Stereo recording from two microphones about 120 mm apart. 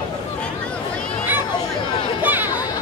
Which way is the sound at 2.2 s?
15° right (ahead or behind).